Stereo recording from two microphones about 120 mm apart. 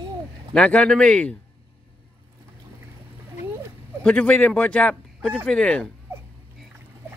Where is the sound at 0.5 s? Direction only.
10° left (ahead or behind).